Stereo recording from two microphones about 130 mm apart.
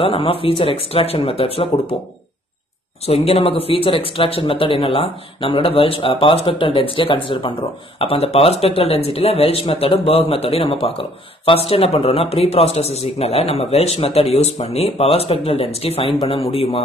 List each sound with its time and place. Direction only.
0.0 s speech: 45° left (ahead or behind)
3.1 s speech: 50° left (ahead or behind)